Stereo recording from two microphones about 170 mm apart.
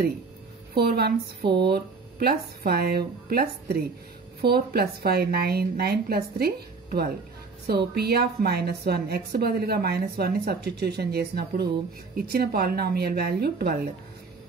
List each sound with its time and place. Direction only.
0.7 s a woman's voice: 65° right (ahead or behind)